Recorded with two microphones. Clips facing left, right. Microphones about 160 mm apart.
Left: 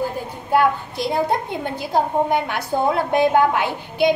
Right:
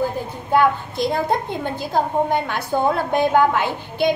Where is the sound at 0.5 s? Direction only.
10° left (ahead or behind).